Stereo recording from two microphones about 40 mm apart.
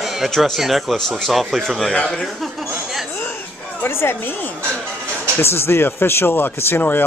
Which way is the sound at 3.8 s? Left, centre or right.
Left.